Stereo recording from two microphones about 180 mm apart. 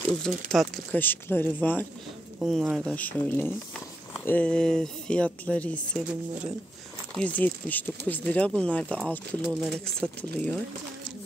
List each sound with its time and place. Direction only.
0.5 s speech: 5° left (ahead or behind)
2.3 s speech: centre (ahead or behind)
7.2 s speech: 10° left (ahead or behind)